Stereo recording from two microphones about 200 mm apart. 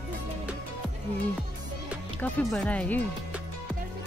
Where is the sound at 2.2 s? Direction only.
5° left (ahead or behind).